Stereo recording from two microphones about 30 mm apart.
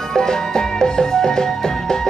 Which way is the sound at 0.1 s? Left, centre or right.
Left.